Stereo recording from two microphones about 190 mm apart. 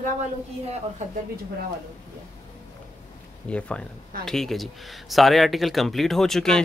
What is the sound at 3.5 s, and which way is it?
Speech, 5° left (ahead or behind).